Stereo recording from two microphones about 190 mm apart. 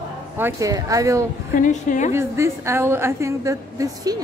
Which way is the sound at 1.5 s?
40° left (ahead or behind).